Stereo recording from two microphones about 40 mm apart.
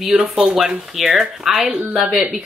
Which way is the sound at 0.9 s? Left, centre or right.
Centre.